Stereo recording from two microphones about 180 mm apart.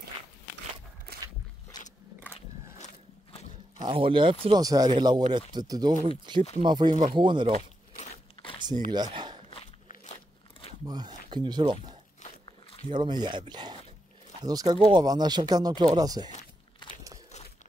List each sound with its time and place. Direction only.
3.8 s speech: 30° right (ahead or behind)
8.9 s a sound: 25° right (ahead or behind)
10.9 s speech: 25° right (ahead or behind)
16.8 s biting: 25° left (ahead or behind)